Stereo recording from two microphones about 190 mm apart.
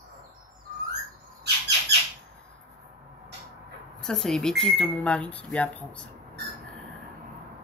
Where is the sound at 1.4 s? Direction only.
60° right (ahead or behind).